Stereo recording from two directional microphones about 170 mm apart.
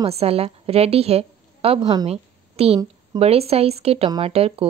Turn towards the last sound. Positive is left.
turn(degrees=-35)  # may be behind; listen again after turning